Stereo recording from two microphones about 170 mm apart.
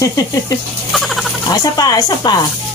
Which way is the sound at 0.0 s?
20° left (ahead or behind).